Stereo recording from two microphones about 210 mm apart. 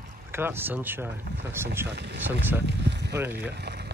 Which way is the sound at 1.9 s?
55° right (ahead or behind).